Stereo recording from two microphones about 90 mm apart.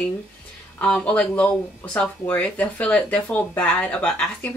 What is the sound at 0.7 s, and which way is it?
Speech, 10° left (ahead or behind).